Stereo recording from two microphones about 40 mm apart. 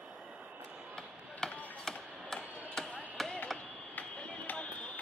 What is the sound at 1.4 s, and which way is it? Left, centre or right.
Music, centre.